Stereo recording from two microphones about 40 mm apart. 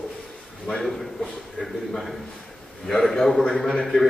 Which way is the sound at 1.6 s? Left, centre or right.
Centre.